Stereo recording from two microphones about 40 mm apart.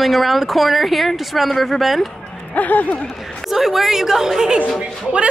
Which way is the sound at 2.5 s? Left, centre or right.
Left.